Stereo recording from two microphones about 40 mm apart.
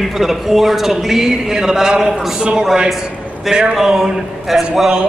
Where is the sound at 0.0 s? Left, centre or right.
Centre.